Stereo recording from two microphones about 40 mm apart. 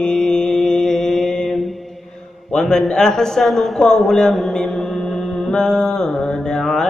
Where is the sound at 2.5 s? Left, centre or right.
Centre.